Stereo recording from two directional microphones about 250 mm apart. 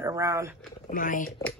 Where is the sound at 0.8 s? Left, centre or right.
Left.